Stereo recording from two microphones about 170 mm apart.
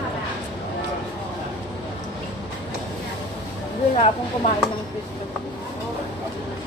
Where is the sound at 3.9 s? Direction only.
35° left (ahead or behind).